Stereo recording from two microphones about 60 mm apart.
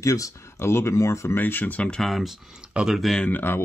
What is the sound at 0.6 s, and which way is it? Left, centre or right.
Speech, left.